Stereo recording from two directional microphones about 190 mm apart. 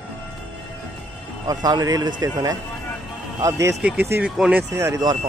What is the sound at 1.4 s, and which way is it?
Speech, 20° right (ahead or behind).